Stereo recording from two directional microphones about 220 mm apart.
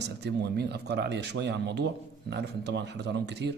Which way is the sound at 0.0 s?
50° right (ahead or behind).